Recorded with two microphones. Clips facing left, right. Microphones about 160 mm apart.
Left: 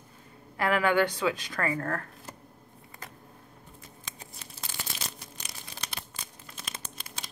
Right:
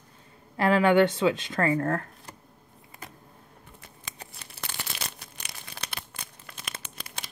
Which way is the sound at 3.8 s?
65° right (ahead or behind).